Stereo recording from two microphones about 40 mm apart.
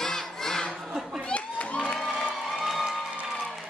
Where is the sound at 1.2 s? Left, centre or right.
Left.